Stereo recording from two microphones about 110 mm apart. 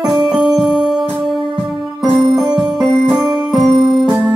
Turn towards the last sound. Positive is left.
turn(degrees=0)  # may be behind; listen again after turning